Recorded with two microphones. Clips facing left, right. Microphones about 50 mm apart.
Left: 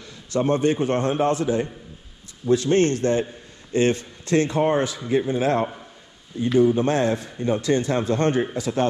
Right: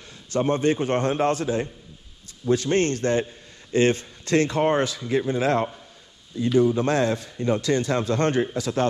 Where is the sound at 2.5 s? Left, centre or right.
Right.